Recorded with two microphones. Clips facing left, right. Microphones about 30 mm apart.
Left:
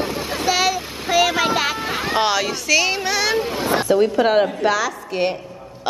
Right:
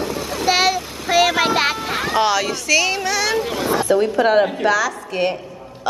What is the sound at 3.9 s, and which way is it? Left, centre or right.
A woman's voice, centre.